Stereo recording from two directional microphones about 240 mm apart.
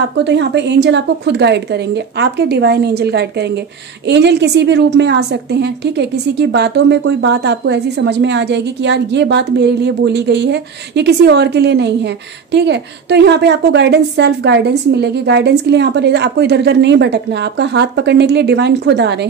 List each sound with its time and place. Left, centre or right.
0.2 s a woman's voice: right